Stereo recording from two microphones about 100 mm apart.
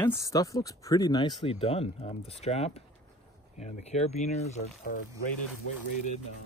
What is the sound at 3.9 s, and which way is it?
Speech, 90° left.